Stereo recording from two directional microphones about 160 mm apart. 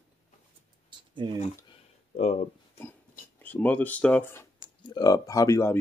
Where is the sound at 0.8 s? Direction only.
30° right (ahead or behind).